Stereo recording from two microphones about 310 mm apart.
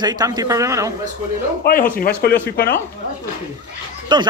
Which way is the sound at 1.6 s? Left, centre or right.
Left.